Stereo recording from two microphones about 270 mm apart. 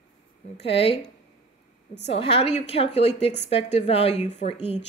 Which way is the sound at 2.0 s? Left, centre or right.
Left.